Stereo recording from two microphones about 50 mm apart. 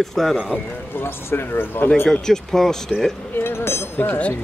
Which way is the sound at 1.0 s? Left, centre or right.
Left.